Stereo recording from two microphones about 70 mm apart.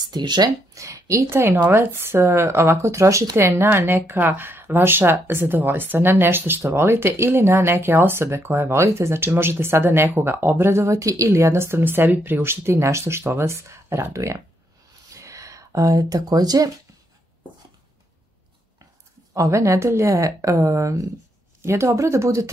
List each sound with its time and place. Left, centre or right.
0.0 s speech: right
0.7 s a woman's voice: right
1.3 s speech: right
19.3 s a woman's voice: right